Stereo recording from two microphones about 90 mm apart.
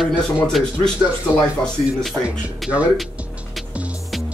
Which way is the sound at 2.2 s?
20° right (ahead or behind).